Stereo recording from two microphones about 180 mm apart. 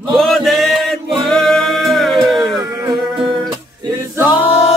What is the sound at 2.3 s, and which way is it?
Music, 25° right (ahead or behind).